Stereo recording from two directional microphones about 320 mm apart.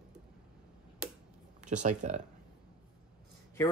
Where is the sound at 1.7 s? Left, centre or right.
Right.